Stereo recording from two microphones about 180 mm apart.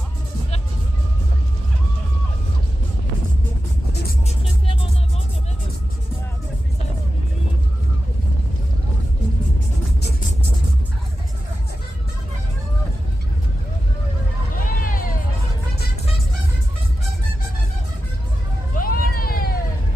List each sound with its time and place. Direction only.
14.6 s vehicle: 50° left (ahead or behind)
18.8 s vehicle: 55° left (ahead or behind)